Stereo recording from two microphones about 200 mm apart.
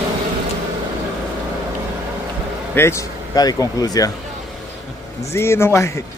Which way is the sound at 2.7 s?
15° left (ahead or behind).